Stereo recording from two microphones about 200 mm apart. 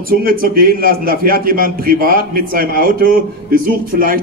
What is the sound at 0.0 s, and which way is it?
A man's voice, 45° right (ahead or behind).